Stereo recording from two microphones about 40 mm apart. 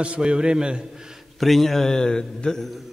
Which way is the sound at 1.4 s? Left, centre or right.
Centre.